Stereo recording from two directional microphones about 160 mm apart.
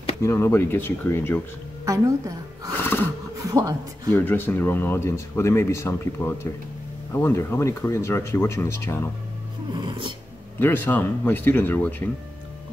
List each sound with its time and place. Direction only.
0.2 s speech: 15° left (ahead or behind)
1.9 s a woman's voice: 20° right (ahead or behind)
2.8 s roaring cats: 15° left (ahead or behind)
3.4 s a woman's voice: 20° right (ahead or behind)
4.1 s speech: 15° left (ahead or behind)
9.8 s dog: 30° right (ahead or behind)
10.6 s speech: 15° left (ahead or behind)